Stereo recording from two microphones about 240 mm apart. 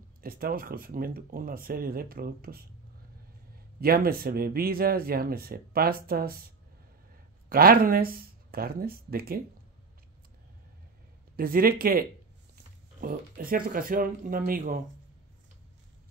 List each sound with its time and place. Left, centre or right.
0.2 s speech: right
3.8 s speech: right
11.3 s speech: right